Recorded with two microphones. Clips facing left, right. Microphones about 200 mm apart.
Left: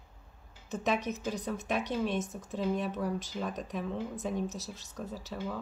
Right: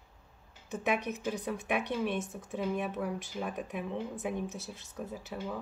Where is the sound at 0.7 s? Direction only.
10° right (ahead or behind).